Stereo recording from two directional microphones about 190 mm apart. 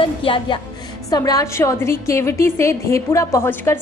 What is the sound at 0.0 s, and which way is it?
A woman's voice, 30° left (ahead or behind).